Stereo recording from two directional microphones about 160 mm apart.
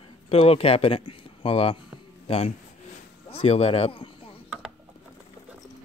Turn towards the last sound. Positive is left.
turn(degrees=35)  # may be behind; listen again after turning